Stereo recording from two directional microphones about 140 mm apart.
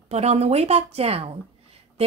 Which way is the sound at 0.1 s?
50° right (ahead or behind).